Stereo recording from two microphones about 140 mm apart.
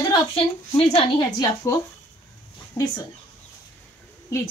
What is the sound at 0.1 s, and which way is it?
Speech, 40° left (ahead or behind).